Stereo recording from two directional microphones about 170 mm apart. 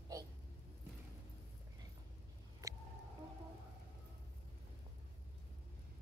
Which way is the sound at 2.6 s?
20° right (ahead or behind).